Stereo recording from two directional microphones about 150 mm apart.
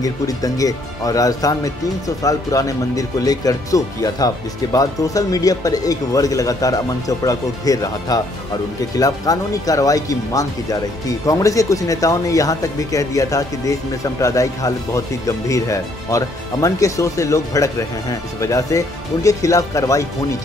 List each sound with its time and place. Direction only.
0.0 s speech: 25° left (ahead or behind)